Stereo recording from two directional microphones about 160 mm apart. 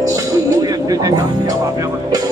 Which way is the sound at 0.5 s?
20° right (ahead or behind).